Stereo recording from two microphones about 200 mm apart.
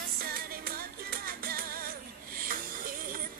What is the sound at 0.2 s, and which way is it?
Music, 50° right (ahead or behind).